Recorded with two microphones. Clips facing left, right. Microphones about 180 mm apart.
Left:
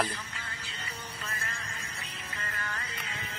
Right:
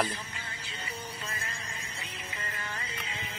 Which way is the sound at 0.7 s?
20° right (ahead or behind).